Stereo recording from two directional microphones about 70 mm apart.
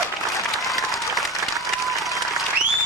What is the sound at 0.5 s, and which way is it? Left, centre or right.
Applause, centre.